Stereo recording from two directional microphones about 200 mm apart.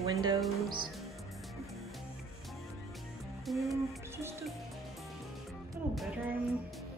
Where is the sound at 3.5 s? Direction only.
Centre (ahead or behind).